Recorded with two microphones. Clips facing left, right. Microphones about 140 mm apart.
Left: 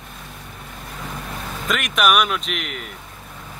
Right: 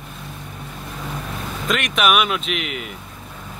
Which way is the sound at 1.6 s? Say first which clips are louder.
Even; centre (ahead or behind).